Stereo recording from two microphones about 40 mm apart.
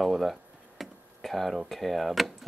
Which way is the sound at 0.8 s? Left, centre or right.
Centre.